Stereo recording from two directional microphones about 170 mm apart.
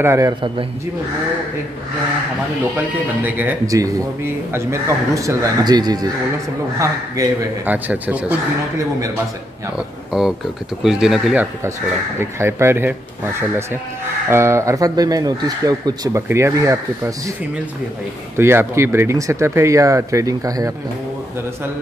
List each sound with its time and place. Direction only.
0.0 s speech: 15° right (ahead or behind)
3.3 s speech: 10° right (ahead or behind)
10.1 s speech: centre (ahead or behind)
12.2 s speech: 15° right (ahead or behind)
14.3 s speech: 15° right (ahead or behind)
18.4 s speech: 15° right (ahead or behind)